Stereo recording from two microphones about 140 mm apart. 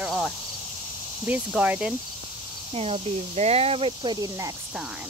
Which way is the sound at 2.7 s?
45° right (ahead or behind).